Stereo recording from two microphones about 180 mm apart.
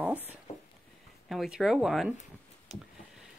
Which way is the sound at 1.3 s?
Centre (ahead or behind).